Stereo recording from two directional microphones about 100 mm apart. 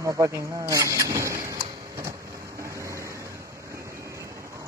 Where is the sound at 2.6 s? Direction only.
30° right (ahead or behind).